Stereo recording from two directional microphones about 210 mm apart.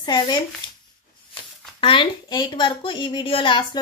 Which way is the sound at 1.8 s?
25° left (ahead or behind).